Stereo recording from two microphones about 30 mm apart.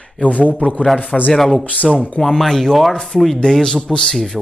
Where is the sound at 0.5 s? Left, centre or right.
Left.